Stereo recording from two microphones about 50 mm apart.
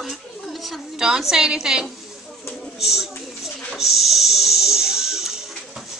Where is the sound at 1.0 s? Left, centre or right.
Centre.